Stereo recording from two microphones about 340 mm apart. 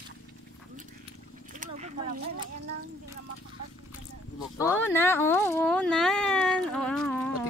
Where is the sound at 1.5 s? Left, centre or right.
Right.